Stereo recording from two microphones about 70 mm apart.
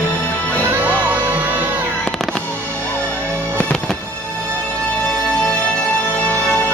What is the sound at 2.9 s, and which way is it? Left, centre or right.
Music, centre.